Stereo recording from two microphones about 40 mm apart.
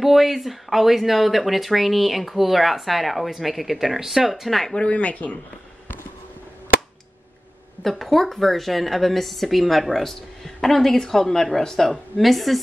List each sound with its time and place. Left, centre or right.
0.0 s speech: centre
4.7 s speech: left
7.8 s speech: centre